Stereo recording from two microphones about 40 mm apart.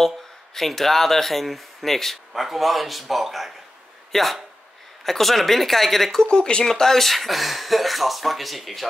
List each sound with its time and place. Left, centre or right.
0.6 s speech: centre
6.2 s speech: left
6.6 s speech: centre